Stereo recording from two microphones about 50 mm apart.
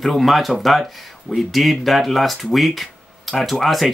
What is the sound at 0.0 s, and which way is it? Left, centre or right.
Speech, centre.